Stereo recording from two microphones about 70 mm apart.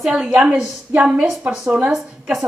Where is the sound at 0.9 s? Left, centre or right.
Centre.